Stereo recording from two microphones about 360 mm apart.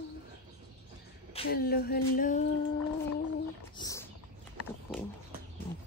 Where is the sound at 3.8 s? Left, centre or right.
Centre.